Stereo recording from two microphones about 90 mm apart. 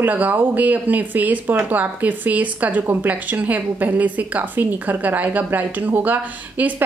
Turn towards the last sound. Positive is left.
turn(degrees=-20)  # may be behind; listen again after turning